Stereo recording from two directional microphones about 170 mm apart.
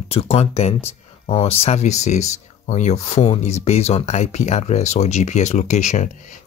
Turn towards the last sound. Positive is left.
turn(degrees=45)  # may be behind; listen again after turning